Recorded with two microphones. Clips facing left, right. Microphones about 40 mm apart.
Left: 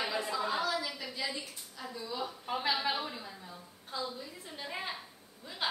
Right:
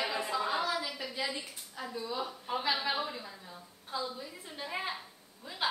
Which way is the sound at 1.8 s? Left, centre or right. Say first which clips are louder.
Right 2 dB; centre.